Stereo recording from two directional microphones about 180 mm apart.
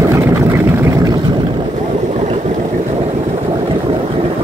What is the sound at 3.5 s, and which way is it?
Vehicle, 25° right (ahead or behind).